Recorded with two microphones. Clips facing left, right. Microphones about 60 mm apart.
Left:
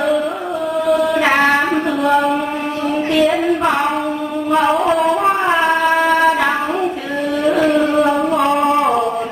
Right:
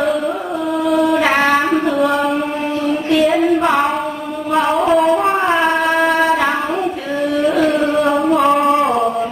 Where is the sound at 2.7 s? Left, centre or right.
Left.